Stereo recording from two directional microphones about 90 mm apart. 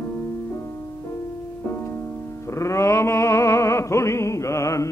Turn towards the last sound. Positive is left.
turn(degrees=35)  # may be behind; listen again after turning